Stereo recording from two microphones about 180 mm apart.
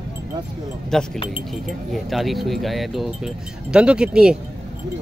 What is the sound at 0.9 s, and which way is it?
Speech, 5° left (ahead or behind).